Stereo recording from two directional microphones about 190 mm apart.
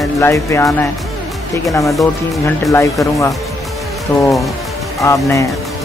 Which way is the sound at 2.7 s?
15° left (ahead or behind).